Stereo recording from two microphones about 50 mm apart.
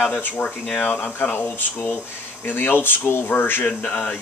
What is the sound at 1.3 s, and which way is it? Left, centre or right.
Speech, left.